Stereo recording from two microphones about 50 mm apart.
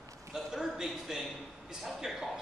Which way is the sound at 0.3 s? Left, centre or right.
Centre.